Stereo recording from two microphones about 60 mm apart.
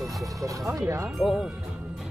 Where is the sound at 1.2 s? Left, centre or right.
Centre.